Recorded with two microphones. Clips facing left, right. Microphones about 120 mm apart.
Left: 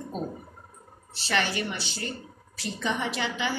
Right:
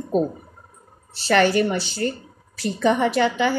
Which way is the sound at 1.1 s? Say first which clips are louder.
Right 11 dB; 50° right (ahead or behind).